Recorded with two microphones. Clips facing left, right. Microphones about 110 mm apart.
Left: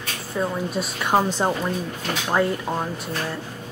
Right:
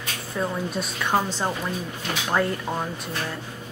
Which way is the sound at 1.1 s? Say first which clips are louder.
Left 4 dB; 20° left (ahead or behind).